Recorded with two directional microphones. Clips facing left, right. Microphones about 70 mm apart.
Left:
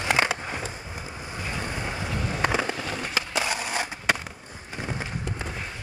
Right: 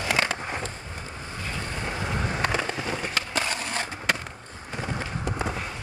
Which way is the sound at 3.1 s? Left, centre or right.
Centre.